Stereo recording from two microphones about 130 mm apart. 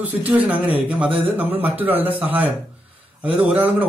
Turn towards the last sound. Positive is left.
turn(degrees=-10)  # may be behind; listen again after turning